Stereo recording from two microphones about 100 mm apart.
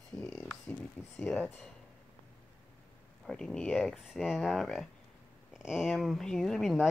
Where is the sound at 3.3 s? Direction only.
5° left (ahead or behind).